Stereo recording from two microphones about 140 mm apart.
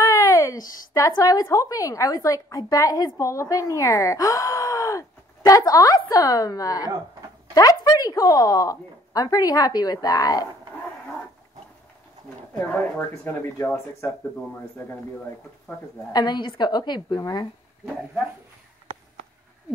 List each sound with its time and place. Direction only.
0.0 s a sound: 20° left (ahead or behind)
0.9 s speech: 25° left (ahead or behind)
12.7 s speech: 15° left (ahead or behind)
15.7 s speech: 15° left (ahead or behind)
16.1 s a woman's voice: 30° left (ahead or behind)